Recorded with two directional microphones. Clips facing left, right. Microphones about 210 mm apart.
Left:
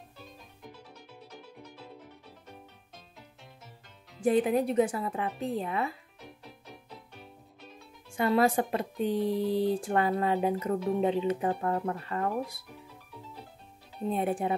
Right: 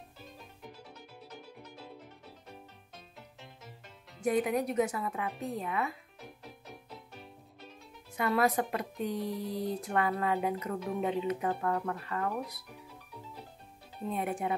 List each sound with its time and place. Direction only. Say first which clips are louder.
4.2 s speech: left 4 dB; 30° left (ahead or behind)
6.2 s music: even; centre (ahead or behind)
8.1 s speech: left 4 dB; 30° left (ahead or behind)
14.0 s speech: left 4 dB; 30° left (ahead or behind)